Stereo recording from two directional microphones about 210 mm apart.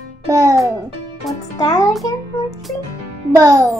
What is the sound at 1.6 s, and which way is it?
Music, 20° left (ahead or behind).